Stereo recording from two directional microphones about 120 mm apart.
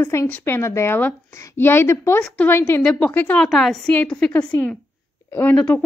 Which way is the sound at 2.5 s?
20° left (ahead or behind).